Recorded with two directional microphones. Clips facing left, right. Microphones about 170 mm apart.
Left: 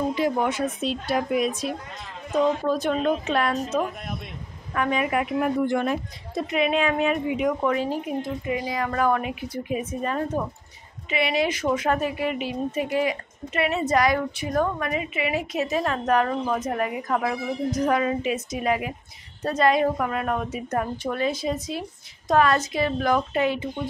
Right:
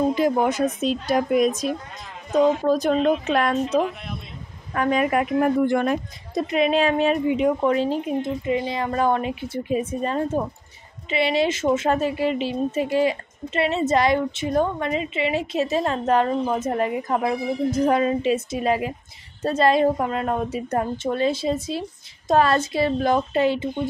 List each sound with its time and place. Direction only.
0.1 s speech: 40° right (ahead or behind)
3.8 s speech: 50° left (ahead or behind)
4.7 s a woman's voice: 40° right (ahead or behind)